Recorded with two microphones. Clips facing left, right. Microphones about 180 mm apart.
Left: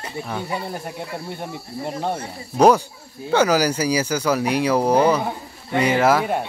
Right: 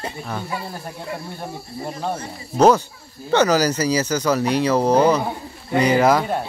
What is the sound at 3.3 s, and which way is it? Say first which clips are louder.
Speech: right 1 dB; 10° left (ahead or behind).